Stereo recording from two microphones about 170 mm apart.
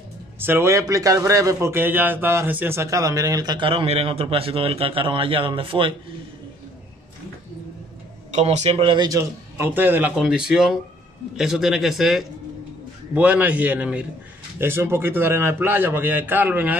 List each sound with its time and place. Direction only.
0.4 s a man's voice: 15° right (ahead or behind); by 5.9 s 30° right (ahead or behind)
8.3 s a man's voice: 40° right (ahead or behind); by 16.7 s 10° right (ahead or behind)